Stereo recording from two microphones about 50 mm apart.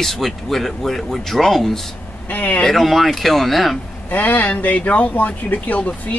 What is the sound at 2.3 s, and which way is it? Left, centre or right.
Speech, left.